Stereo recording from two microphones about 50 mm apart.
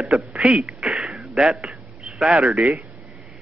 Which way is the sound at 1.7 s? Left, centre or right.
Centre.